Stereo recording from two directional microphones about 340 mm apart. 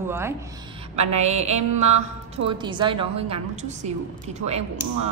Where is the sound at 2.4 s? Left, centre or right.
Centre.